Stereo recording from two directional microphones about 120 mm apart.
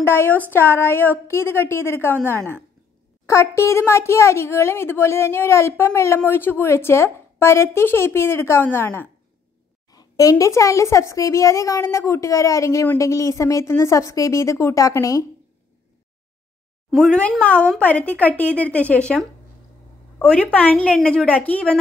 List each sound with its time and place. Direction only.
0.0 s speech: 20° left (ahead or behind)
9.8 s speech: 30° left (ahead or behind)
16.9 s speech: 5° left (ahead or behind)